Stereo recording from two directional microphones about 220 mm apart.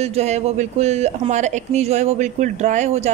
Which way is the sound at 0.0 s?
30° right (ahead or behind).